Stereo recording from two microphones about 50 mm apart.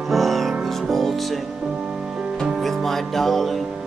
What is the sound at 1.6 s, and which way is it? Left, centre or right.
Music, centre.